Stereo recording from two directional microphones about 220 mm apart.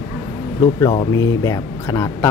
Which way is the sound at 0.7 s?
15° left (ahead or behind).